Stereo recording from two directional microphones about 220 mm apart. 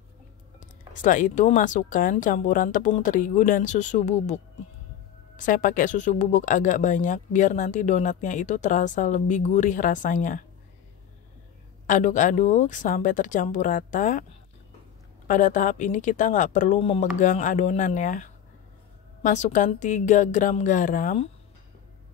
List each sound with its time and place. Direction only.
0.6 s speech: 35° left (ahead or behind)
11.8 s speech: 35° left (ahead or behind)
15.2 s speech: 35° left (ahead or behind)